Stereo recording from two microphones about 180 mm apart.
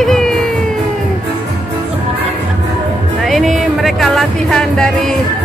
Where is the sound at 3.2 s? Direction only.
Centre (ahead or behind).